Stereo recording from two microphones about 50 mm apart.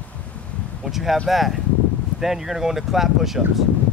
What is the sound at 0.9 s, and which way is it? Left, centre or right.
Speech, centre.